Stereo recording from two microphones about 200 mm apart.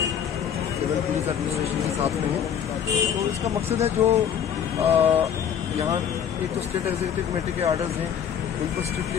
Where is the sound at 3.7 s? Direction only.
30° right (ahead or behind).